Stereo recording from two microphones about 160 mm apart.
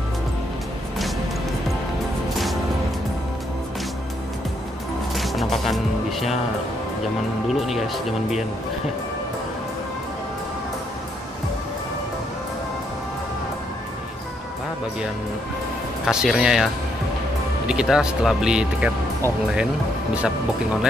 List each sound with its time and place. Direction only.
5.1 s music: centre (ahead or behind)
7.4 s speech: centre (ahead or behind)
16.1 s speech: 5° right (ahead or behind)